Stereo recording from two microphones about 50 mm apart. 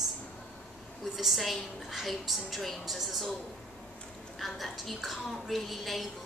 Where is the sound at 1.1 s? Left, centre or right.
Centre.